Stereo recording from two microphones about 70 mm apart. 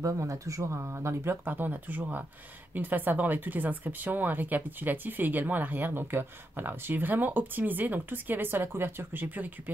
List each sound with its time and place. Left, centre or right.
0.0 s speech: right